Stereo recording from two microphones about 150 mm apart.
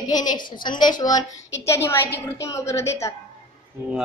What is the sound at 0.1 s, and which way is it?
A woman's voice, 25° left (ahead or behind).